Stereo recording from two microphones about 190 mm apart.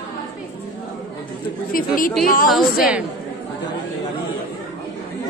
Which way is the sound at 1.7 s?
45° left (ahead or behind).